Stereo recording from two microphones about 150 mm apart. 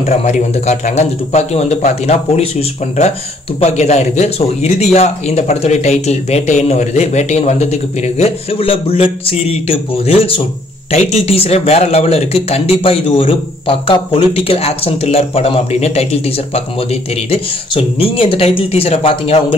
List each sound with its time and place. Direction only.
0.0 s a man's voice: 50° left (ahead or behind)
3.6 s a man's voice: 45° left (ahead or behind)